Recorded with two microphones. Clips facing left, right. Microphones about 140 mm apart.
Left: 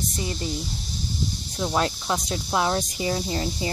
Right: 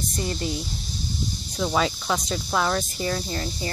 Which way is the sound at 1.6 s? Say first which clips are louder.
Right 1 dB; 5° left (ahead or behind).